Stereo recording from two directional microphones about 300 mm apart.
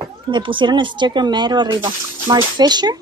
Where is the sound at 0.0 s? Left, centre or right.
Centre.